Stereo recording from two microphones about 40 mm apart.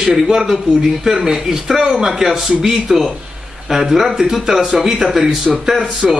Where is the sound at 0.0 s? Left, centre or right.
Centre.